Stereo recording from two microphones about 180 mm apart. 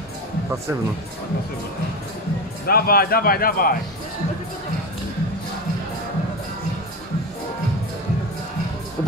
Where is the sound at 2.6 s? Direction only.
55° left (ahead or behind).